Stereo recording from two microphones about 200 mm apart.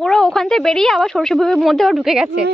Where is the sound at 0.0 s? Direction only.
5° left (ahead or behind).